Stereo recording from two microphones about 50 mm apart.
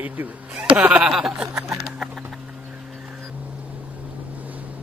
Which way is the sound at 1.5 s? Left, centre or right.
Right.